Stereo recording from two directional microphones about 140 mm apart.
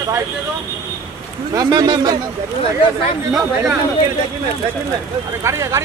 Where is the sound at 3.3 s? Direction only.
Centre (ahead or behind).